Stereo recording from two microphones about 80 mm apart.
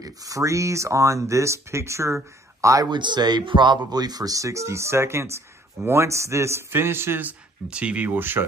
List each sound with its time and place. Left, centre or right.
0.0 s a man's voice: right
2.9 s a man's voice: right